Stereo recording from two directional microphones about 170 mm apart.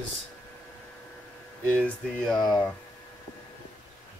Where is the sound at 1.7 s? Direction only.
5° left (ahead or behind).